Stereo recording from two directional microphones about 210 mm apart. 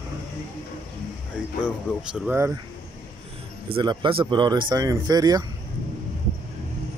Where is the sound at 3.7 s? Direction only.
20° right (ahead or behind).